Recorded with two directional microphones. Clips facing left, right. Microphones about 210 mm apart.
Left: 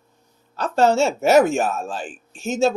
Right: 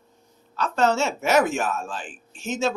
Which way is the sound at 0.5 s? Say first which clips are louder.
Left 4 dB; 35° left (ahead or behind).